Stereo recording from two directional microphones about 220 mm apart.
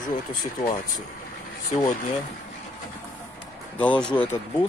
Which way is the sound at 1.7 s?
25° left (ahead or behind).